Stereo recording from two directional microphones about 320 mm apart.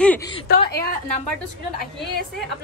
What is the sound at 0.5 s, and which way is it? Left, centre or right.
Speech, left.